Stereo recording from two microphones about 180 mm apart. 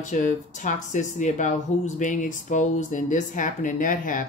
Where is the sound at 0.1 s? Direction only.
45° left (ahead or behind).